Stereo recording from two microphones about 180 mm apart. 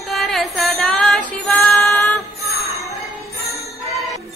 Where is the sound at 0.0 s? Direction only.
Centre (ahead or behind).